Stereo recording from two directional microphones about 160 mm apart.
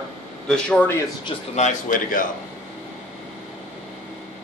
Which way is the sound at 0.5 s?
5° left (ahead or behind).